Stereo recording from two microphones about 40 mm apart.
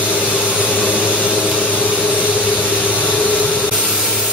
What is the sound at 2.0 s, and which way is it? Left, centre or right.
Vehicle, right.